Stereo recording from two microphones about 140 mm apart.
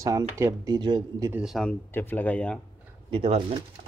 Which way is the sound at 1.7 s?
15° left (ahead or behind).